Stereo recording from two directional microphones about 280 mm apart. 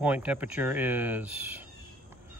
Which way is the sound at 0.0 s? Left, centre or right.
Centre.